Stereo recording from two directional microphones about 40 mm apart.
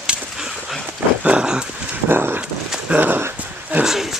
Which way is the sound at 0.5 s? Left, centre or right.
Centre.